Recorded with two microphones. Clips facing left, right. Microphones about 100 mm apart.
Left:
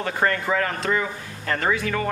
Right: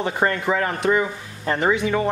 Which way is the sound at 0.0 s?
20° right (ahead or behind).